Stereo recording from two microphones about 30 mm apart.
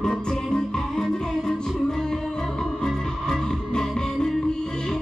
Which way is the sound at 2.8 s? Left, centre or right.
Left.